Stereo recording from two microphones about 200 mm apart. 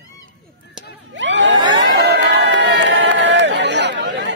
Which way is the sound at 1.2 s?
65° right (ahead or behind).